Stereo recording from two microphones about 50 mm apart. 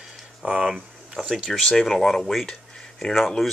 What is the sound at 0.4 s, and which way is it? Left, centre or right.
Speech, right.